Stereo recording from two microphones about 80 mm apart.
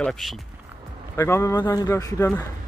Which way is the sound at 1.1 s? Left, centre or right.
Left.